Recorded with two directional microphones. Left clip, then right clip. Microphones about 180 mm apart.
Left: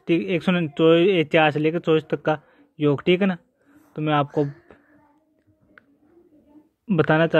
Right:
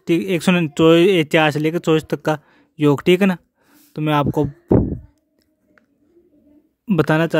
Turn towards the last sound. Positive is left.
turn(degrees=-55)  # may be behind; listen again after turning